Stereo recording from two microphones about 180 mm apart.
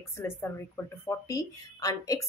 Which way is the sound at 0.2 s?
15° left (ahead or behind).